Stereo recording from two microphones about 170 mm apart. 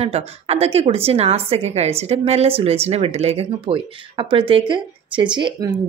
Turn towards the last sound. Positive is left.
turn(degrees=-25)  # may be behind; listen again after turning